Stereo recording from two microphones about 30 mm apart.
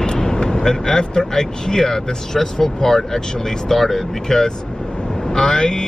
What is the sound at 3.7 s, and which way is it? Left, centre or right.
Speech, centre.